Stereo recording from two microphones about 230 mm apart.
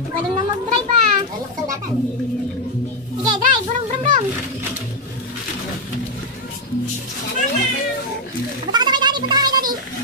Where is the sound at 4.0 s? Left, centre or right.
Right.